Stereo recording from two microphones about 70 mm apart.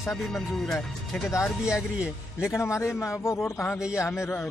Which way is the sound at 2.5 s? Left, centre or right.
Left.